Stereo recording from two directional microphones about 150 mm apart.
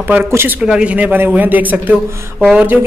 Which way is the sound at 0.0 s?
15° right (ahead or behind).